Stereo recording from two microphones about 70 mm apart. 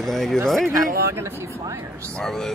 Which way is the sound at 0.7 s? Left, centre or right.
Right.